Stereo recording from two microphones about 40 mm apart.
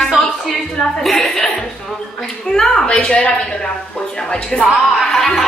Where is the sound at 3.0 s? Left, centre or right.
Left.